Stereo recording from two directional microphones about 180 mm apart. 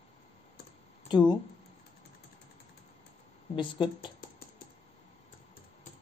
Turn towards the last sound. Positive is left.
turn(degrees=25)  # may be behind; listen again after turning